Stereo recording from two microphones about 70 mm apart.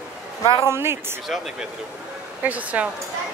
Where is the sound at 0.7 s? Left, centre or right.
Right.